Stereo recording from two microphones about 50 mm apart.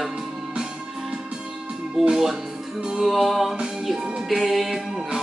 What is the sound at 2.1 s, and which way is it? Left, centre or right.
Music, centre.